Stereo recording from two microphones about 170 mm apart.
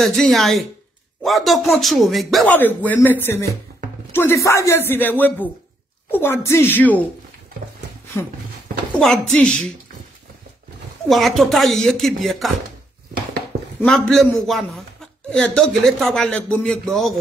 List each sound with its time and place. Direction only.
0.0 s speech: centre (ahead or behind)
2.5 s speech: 10° left (ahead or behind)
8.2 s speech: 15° left (ahead or behind)
11.1 s speech: centre (ahead or behind)
13.5 s a sound: 75° right (ahead or behind)
13.8 s speech: 5° left (ahead or behind)